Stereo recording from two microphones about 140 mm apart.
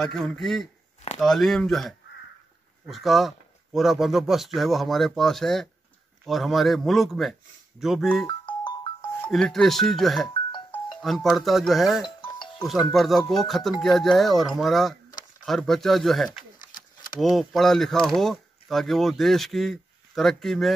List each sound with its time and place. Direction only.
0.0 s speech: 5° left (ahead or behind)
8.3 s music: 30° left (ahead or behind)
9.3 s speech: centre (ahead or behind)
12.2 s music: 35° left (ahead or behind)
12.6 s speech: centre (ahead or behind)